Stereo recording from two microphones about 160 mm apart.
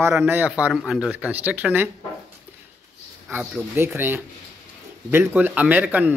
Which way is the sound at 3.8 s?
15° right (ahead or behind).